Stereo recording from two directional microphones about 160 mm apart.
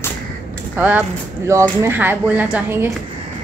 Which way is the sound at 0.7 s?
10° right (ahead or behind).